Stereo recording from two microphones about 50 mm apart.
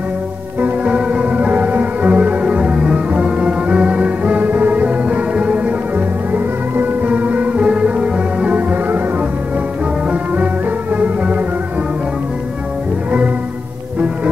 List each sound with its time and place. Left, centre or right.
0.6 s music: right
8.5 s music: right
10.1 s music: right